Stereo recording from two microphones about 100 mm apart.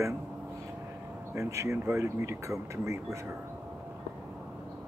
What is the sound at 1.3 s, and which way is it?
Speech, 30° right (ahead or behind).